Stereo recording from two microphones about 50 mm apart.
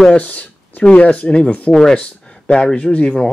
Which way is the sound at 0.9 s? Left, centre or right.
Left.